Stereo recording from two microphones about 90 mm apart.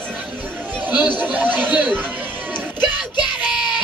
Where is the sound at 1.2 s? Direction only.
20° right (ahead or behind).